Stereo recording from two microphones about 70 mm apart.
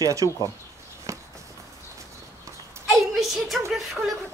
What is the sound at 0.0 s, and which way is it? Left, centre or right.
Speech, right.